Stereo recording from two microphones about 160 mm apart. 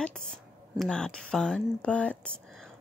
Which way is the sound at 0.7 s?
5° left (ahead or behind).